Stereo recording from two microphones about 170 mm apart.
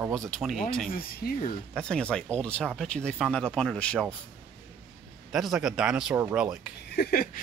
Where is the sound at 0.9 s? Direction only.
60° left (ahead or behind).